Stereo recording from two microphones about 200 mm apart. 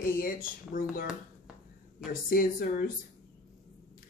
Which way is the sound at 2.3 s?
45° left (ahead or behind).